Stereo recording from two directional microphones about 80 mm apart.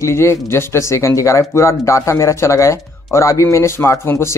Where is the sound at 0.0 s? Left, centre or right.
Left.